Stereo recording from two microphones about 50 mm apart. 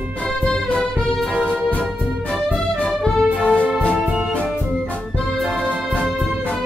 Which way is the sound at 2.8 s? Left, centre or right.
Centre.